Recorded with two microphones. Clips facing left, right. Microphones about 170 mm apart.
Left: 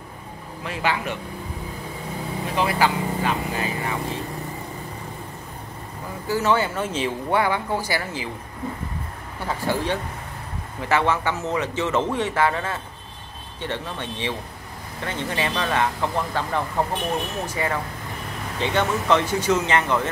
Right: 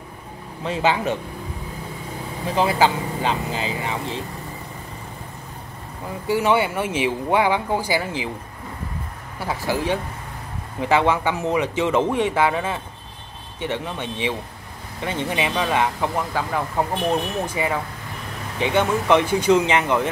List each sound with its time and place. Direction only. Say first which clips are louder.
0.7 s speech: right 5 dB; 25° right (ahead or behind)
2.5 s speech: right 3 dB; 25° right (ahead or behind)
6.3 s speech: right 2 dB; 15° right (ahead or behind)
9.4 s speech: right 1 dB; 10° right (ahead or behind)